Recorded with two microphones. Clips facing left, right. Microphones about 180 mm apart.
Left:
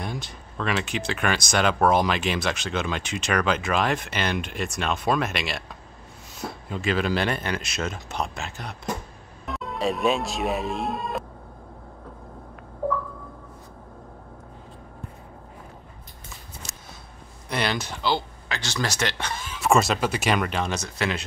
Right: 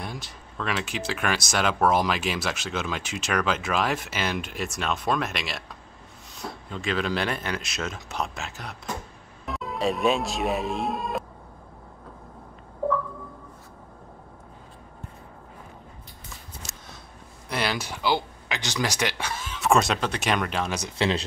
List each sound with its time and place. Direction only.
0.0 s speech: centre (ahead or behind)
16.6 s a sound: centre (ahead or behind)
17.5 s speech: 5° right (ahead or behind)
21.0 s speech: 30° right (ahead or behind)